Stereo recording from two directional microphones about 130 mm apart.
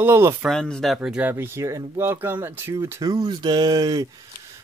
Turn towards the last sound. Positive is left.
turn(degrees=-30)  # may be behind; listen again after turning